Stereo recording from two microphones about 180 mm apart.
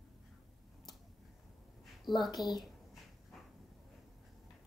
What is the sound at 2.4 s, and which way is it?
Speech, centre (ahead or behind).